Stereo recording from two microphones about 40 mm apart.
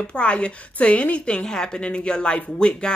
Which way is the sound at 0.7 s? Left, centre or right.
Left.